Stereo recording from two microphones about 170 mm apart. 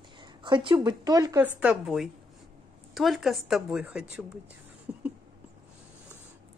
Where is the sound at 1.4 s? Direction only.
10° right (ahead or behind).